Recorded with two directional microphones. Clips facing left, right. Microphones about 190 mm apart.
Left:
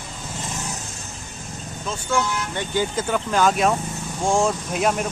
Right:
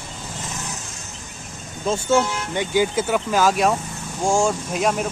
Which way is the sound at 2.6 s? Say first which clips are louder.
Right 5 dB; 10° right (ahead or behind).